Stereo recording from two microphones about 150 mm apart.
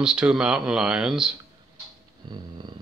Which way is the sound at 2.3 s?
30° right (ahead or behind).